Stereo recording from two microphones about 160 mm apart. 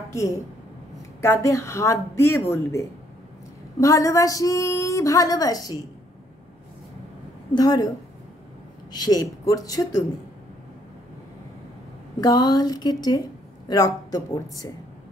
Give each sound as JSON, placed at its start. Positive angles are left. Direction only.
{"t": 0.1, "sound": "a woman's voice", "side_deg": 20}
{"t": 7.5, "sound": "a woman's voice", "side_deg": 25}
{"t": 8.9, "sound": "a woman's voice", "side_deg": 25}
{"t": 12.2, "sound": "a woman's voice", "side_deg": 25}